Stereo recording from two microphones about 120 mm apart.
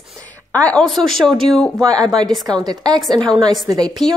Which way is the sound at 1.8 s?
35° right (ahead or behind).